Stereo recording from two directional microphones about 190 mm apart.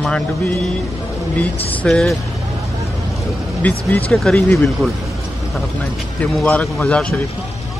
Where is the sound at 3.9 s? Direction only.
5° left (ahead or behind).